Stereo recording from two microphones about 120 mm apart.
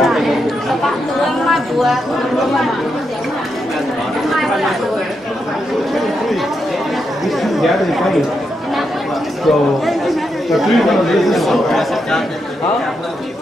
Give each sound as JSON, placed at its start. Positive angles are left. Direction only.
{"t": 0.0, "sound": "chatter", "side_deg": 0}
{"t": 1.5, "sound": "speech", "side_deg": 0}
{"t": 4.3, "sound": "a sound", "side_deg": 0}
{"t": 7.2, "sound": "speech", "side_deg": 0}
{"t": 9.4, "sound": "speech", "side_deg": 0}